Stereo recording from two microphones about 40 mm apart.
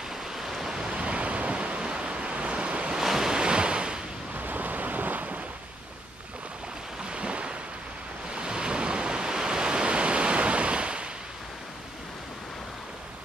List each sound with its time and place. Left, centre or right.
0.4 s a sound: centre
0.7 s waves: right
3.0 s waves: centre
4.4 s waves: right
7.1 s waves: right